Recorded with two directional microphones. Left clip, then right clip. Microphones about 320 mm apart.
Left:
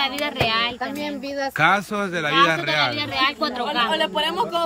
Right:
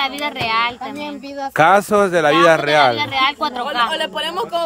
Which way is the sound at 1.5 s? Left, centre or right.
Centre.